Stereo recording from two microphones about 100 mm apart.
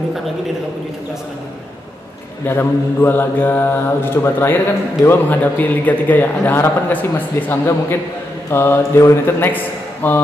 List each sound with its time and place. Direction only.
2.4 s a man's voice: 20° left (ahead or behind)